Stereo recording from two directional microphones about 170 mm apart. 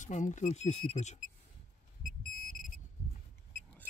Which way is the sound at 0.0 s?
45° left (ahead or behind).